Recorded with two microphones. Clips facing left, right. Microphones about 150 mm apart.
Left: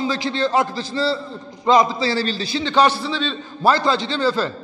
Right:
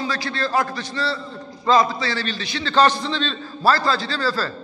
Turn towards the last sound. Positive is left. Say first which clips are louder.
# left 4 dB
turn(degrees=20)  # may be behind; listen again after turning